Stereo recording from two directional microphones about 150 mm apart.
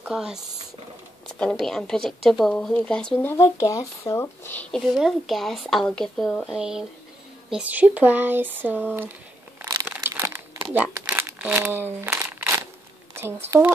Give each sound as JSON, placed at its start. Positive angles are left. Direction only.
{"t": 0.0, "sound": "speech", "side_deg": -5}
{"t": 1.4, "sound": "a woman's voice", "side_deg": 5}
{"t": 9.9, "sound": "crumpling", "side_deg": -15}
{"t": 13.5, "sound": "speech", "side_deg": -15}